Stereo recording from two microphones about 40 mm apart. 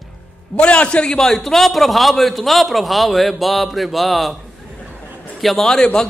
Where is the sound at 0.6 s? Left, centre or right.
Left.